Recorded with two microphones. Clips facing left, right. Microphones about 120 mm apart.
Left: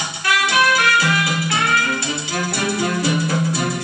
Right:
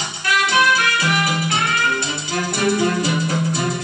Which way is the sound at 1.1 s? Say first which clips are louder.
Even; 25° right (ahead or behind).